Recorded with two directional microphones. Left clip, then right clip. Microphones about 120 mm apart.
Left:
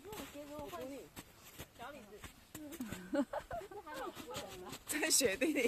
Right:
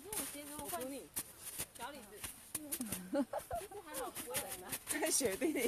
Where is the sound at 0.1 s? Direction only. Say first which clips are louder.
Right 1 dB; 5° right (ahead or behind).